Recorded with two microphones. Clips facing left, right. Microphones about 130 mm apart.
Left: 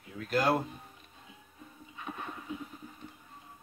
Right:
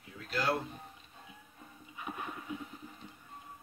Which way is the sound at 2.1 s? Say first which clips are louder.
Even; 10° left (ahead or behind).